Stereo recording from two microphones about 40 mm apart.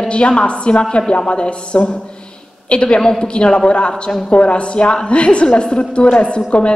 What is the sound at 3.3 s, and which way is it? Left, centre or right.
A woman's voice, left.